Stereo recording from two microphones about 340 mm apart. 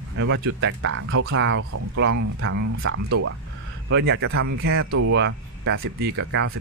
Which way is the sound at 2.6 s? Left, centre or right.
Right.